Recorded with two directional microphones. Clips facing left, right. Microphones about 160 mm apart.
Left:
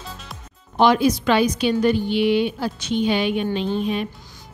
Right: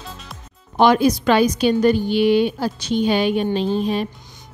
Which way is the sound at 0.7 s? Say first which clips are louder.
Right 2 dB; 45° right (ahead or behind).